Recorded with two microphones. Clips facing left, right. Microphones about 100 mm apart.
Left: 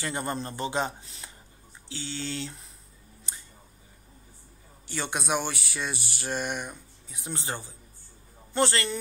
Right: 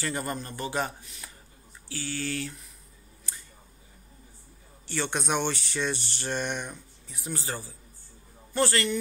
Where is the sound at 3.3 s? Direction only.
20° left (ahead or behind).